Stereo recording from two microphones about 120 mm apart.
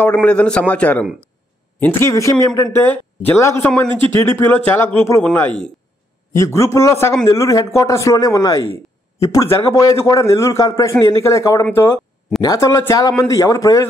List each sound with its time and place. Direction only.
0.0 s a man's voice: 15° left (ahead or behind)
6.3 s a man's voice: 25° left (ahead or behind)